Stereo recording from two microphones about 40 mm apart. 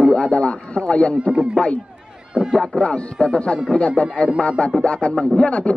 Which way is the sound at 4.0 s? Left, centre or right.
Left.